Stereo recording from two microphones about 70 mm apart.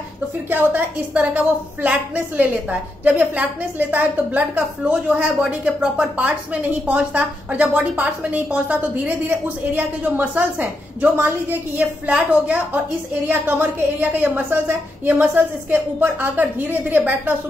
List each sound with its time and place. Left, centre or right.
0.5 s a woman's voice: right